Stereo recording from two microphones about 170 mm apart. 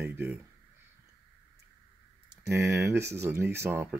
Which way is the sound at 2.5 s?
15° right (ahead or behind).